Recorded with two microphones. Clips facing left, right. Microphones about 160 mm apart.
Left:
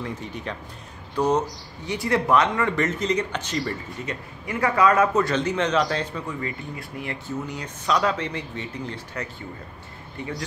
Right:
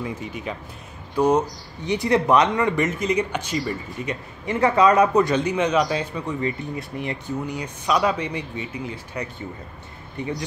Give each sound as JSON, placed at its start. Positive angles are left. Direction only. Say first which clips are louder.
{"t": 0.0, "sound": "speech", "louder": "right 2 dB", "side_deg": -10}
{"t": 4.5, "sound": "speech", "louder": "right 3 dB", "side_deg": -25}